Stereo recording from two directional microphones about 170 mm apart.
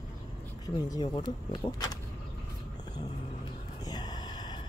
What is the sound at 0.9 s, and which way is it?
Speech, 25° left (ahead or behind).